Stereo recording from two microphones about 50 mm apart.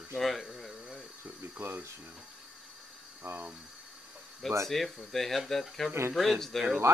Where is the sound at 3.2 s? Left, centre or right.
Right.